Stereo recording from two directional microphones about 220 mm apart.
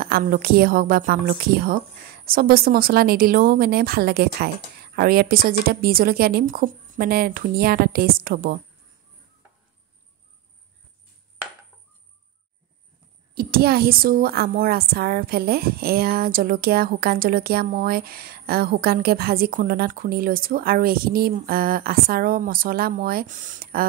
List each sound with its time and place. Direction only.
0.0 s a woman's voice: 40° right (ahead or behind)
13.3 s speech: 45° right (ahead or behind)